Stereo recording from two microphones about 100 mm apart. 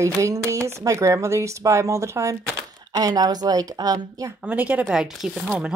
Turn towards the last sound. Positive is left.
turn(degrees=0)  # may be behind; listen again after turning